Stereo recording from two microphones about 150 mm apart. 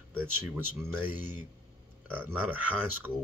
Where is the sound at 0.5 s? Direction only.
15° right (ahead or behind).